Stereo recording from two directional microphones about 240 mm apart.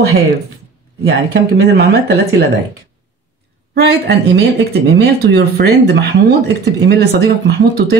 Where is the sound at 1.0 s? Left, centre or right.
Right.